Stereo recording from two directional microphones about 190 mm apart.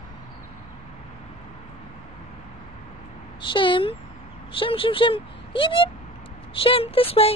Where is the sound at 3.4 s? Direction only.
25° left (ahead or behind).